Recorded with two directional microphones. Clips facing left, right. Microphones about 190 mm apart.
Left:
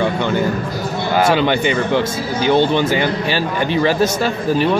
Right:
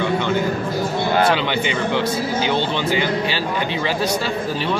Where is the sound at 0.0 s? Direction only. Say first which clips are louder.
Left 2 dB; 45° left (ahead or behind).